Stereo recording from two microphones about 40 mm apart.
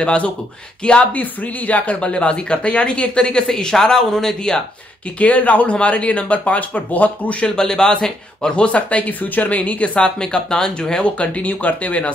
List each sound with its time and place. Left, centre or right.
0.0 s speech: left
1.1 s speech: left
2.0 s speech: left
5.2 s speech: left
7.5 s speech: centre
8.6 s speech: left
9.9 s speech: left